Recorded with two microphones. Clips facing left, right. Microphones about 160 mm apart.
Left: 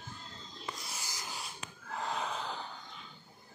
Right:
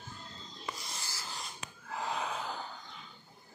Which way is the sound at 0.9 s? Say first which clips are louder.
Even; 15° left (ahead or behind).